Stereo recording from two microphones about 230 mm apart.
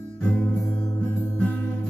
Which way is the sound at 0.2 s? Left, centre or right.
Centre.